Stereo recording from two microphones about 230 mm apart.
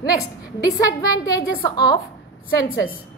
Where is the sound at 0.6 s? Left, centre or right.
Centre.